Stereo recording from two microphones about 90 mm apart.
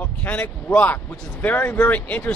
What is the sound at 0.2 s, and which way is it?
Speech, 20° left (ahead or behind).